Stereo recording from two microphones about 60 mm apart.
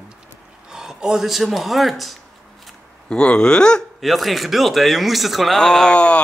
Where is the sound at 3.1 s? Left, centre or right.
Centre.